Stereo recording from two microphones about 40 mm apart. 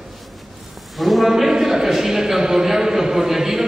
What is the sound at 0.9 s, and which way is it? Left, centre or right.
A man's voice, centre.